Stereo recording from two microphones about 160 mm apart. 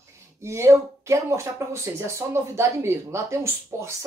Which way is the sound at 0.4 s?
15° right (ahead or behind).